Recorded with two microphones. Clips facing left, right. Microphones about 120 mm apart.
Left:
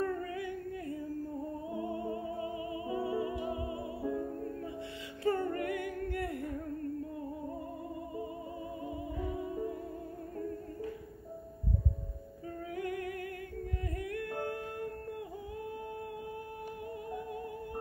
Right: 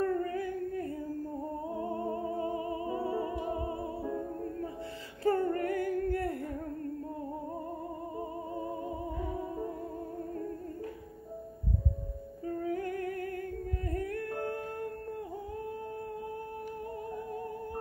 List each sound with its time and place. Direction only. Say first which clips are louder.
0.0 s singing: right 4 dB; 40° right (ahead or behind)
1.7 s music: right 2 dB; 40° right (ahead or behind)
5.2 s humming: right 3 dB; 40° right (ahead or behind)
8.2 s music: right 3 dB; 40° right (ahead or behind)
12.6 s music: right 2 dB; 40° right (ahead or behind)